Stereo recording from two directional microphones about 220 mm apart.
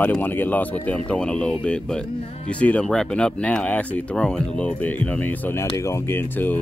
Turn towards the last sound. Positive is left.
turn(degrees=10)  # may be behind; listen again after turning